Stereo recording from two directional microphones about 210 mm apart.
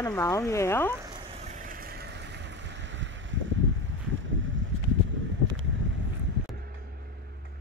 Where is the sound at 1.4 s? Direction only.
35° right (ahead or behind); by 3.3 s 60° right (ahead or behind).